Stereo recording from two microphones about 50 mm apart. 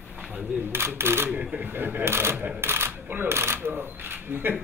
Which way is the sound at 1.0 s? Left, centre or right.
Right.